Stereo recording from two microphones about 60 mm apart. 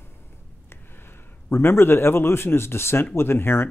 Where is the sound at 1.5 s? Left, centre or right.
Left.